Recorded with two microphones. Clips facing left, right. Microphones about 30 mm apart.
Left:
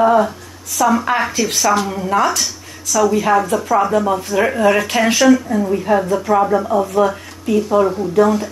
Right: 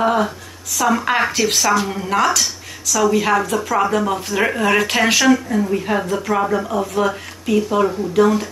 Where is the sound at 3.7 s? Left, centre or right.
Centre.